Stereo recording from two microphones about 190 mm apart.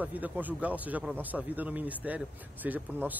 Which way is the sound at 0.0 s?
10° right (ahead or behind).